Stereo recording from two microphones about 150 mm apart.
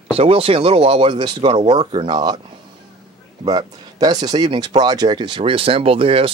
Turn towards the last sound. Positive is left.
turn(degrees=-40)  # may be behind; listen again after turning